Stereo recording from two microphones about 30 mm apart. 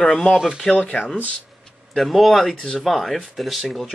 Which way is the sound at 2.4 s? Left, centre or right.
Centre.